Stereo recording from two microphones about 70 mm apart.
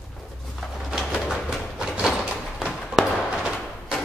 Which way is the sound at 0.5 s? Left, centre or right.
Centre.